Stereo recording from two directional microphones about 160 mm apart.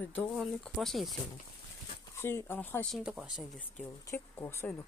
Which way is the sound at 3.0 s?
5° right (ahead or behind).